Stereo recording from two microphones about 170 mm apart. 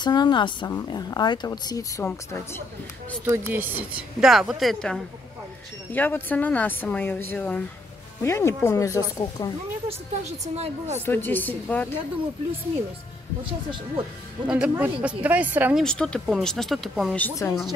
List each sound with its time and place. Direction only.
0.0 s speech: 25° left (ahead or behind)
3.3 s a woman's voice: 10° right (ahead or behind)
5.9 s speech: 10° left (ahead or behind)
10.4 s a woman's voice: 40° right (ahead or behind)
11.1 s speech: 10° left (ahead or behind)
13.5 s a woman's voice: 30° right (ahead or behind)
14.5 s a woman's voice: 5° right (ahead or behind)
15.8 s a woman's voice: 5° left (ahead or behind)
17.4 s speech: 15° left (ahead or behind)